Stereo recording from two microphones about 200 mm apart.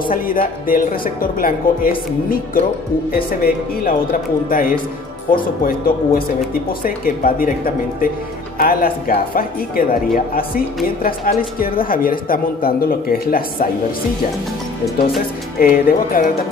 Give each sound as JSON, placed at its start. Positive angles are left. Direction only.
{"t": 0.1, "sound": "a woman's voice", "side_deg": 45}
{"t": 15.6, "sound": "a woman's voice", "side_deg": 45}